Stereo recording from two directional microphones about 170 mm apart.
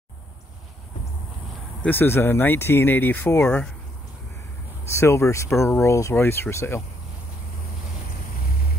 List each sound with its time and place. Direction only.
1.8 s speech: 10° left (ahead or behind)
4.8 s speech: 15° left (ahead or behind)